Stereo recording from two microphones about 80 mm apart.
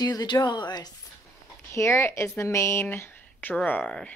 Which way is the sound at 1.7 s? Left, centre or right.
Left.